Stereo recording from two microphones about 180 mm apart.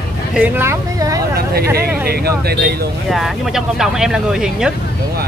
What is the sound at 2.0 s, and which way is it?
Speech, 60° right (ahead or behind).